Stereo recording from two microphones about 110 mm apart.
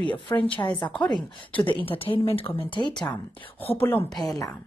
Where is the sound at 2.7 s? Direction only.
45° left (ahead or behind).